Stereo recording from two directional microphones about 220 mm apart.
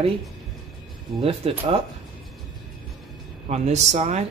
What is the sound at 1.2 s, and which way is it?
Speech, 25° right (ahead or behind).